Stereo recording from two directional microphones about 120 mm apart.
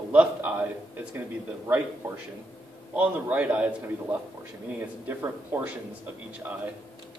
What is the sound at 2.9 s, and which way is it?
A man's voice, 10° right (ahead or behind).